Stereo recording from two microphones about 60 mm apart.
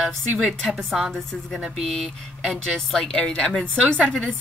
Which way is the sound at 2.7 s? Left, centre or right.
Centre.